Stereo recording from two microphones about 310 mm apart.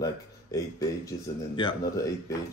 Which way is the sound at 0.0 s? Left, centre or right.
Centre.